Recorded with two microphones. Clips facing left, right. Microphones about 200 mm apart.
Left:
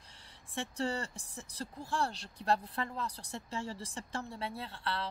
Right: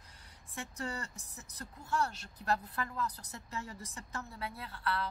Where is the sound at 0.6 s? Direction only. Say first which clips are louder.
Left 5 dB; 30° left (ahead or behind).